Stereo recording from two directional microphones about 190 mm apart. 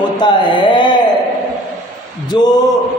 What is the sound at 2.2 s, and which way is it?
Mantra, 20° left (ahead or behind).